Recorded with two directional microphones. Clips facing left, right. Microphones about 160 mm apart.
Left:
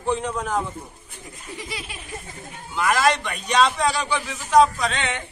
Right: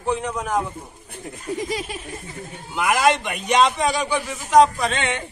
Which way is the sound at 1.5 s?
40° right (ahead or behind).